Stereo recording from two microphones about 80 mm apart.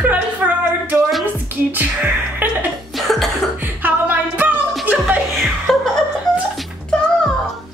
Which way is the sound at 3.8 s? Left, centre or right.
Right.